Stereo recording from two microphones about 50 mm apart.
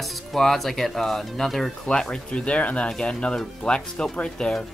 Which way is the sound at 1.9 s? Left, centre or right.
Centre.